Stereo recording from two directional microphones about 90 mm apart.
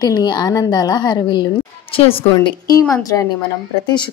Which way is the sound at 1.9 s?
90° left.